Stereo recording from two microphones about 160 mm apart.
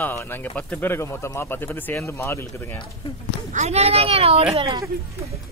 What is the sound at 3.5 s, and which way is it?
Speech, 45° right (ahead or behind).